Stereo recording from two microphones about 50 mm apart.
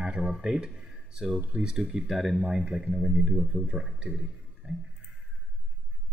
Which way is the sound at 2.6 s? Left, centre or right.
Centre.